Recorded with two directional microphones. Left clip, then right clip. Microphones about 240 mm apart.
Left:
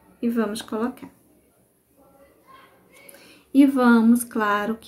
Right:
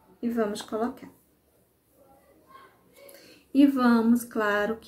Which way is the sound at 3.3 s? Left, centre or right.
Centre.